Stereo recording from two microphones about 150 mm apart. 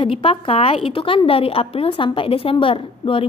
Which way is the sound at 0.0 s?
35° left (ahead or behind).